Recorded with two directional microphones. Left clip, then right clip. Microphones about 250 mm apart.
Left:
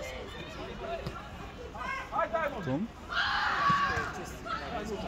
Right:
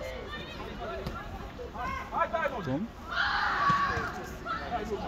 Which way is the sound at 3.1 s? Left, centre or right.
Left.